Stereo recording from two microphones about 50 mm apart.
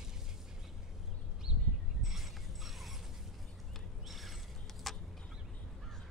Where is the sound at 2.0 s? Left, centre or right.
Centre.